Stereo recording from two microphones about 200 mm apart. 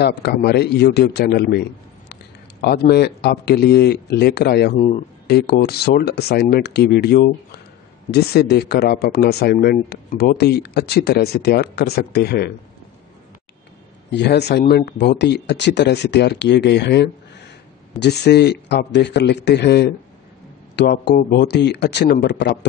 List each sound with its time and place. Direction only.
0.0 s speech: 55° left (ahead or behind)
4.7 s speech: 35° left (ahead or behind)
5.2 s speech: 55° left (ahead or behind)
14.1 s speech: 60° left (ahead or behind)